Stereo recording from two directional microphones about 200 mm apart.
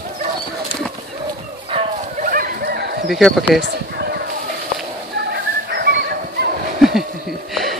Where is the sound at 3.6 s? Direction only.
55° right (ahead or behind).